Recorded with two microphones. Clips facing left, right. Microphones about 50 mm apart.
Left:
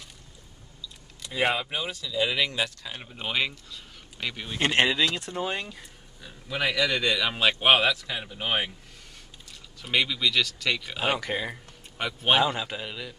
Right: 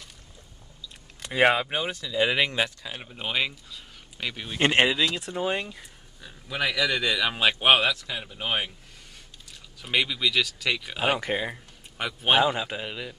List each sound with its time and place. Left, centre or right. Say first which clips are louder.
0.8 s speech: right 3 dB; right
2.8 s speech: right 1 dB; centre
4.6 s speech: right 2 dB; right
4.8 s speech: even; centre
9.8 s speech: even; centre
11.1 s speech: right 2 dB; right
11.5 s a man's voice: even; centre